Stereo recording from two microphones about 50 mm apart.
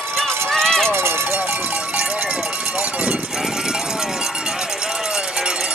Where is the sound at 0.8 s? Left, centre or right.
Right.